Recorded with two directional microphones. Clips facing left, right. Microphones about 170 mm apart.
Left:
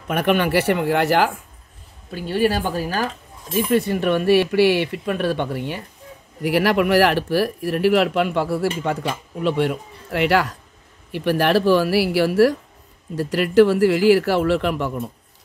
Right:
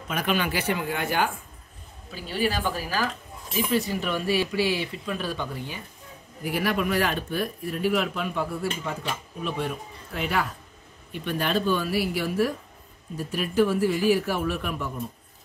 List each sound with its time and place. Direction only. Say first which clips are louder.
0.1 s speech: left 8 dB; 60° left (ahead or behind); by 1.3 s 80° left
2.0 s speech: left 7 dB; 50° left (ahead or behind)
3.5 s speech: left 6 dB; 55° left (ahead or behind); by 15.0 s 85° left